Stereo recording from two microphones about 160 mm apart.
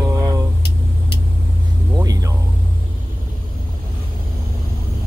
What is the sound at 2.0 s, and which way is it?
Vehicle, 20° right (ahead or behind).